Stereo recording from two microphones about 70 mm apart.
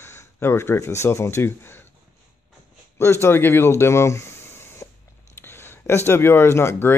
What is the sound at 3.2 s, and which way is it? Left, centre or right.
Speech, left.